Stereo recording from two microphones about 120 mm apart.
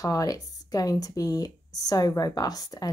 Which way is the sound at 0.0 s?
30° left (ahead or behind).